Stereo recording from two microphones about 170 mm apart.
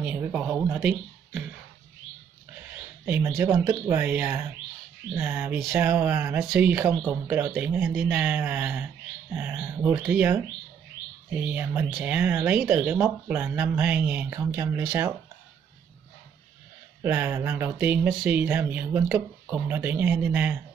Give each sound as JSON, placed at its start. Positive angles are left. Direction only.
{"t": 0.0, "sound": "speech", "side_deg": -10}
{"t": 3.1, "sound": "speech", "side_deg": -15}
{"t": 11.4, "sound": "speech", "side_deg": -10}
{"t": 17.0, "sound": "speech", "side_deg": -10}